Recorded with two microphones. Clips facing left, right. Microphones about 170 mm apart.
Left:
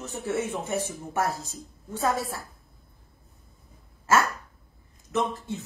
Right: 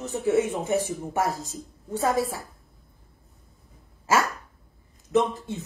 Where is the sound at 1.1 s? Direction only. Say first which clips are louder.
Right 1 dB; 15° right (ahead or behind).